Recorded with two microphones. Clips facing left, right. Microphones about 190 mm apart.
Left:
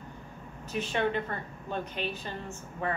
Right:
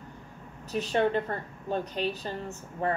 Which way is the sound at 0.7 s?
40° right (ahead or behind).